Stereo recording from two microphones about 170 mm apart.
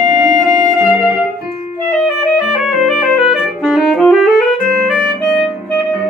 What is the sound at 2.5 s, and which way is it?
Saxophone, centre (ahead or behind).